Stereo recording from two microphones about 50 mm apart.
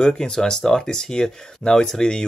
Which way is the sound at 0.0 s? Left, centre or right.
Centre.